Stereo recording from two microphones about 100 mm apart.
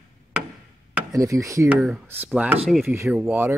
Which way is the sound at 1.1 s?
30° right (ahead or behind).